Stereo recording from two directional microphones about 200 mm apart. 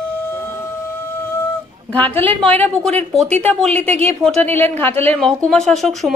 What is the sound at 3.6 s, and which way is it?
Speech, 30° right (ahead or behind).